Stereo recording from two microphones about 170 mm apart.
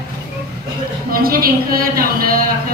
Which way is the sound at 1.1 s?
60° right (ahead or behind).